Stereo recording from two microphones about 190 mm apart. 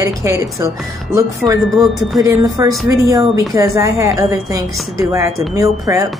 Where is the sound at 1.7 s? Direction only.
Centre (ahead or behind).